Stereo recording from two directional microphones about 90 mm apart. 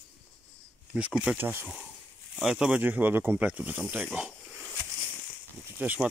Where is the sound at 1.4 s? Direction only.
25° right (ahead or behind).